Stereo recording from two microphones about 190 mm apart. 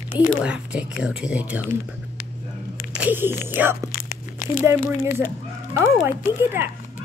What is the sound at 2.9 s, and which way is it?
Speech, 10° right (ahead or behind).